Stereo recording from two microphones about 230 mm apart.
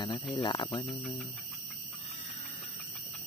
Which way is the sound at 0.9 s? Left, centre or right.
Centre.